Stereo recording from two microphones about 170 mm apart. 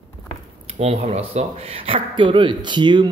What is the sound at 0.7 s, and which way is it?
Speech, 40° right (ahead or behind).